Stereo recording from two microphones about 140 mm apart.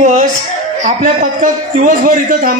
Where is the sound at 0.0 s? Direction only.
65° right (ahead or behind).